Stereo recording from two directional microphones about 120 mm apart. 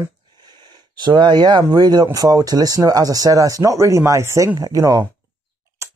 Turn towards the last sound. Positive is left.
turn(degrees=-30)  # may be behind; listen again after turning